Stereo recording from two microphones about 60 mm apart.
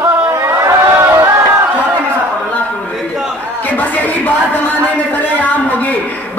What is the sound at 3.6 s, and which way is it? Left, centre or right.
Speech, left.